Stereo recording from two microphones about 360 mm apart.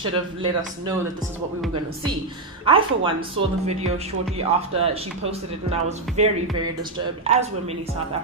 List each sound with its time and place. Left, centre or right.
0.4 s speech: centre
2.6 s speech: centre